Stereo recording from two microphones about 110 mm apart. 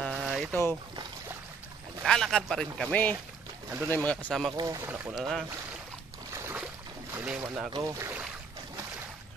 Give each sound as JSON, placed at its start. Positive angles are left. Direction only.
{"t": 0.1, "sound": "boat", "side_deg": -5}
{"t": 0.5, "sound": "boat", "side_deg": 20}
{"t": 2.0, "sound": "a man's voice", "side_deg": 5}
{"t": 3.9, "sound": "speech", "side_deg": 15}
{"t": 4.6, "sound": "speech", "side_deg": -35}
{"t": 4.8, "sound": "speech", "side_deg": -20}
{"t": 5.1, "sound": "a man's voice", "side_deg": 0}
{"t": 6.3, "sound": "boat", "side_deg": -25}
{"t": 7.2, "sound": "speech", "side_deg": -15}
{"t": 7.7, "sound": "speech", "side_deg": -30}